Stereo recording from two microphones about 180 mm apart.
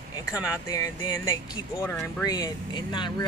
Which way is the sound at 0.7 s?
20° left (ahead or behind).